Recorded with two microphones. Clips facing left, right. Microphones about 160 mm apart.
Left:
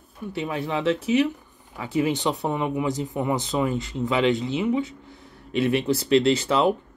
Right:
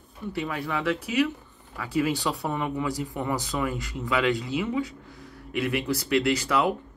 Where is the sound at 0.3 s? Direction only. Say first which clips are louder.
Left 3 dB; 20° left (ahead or behind).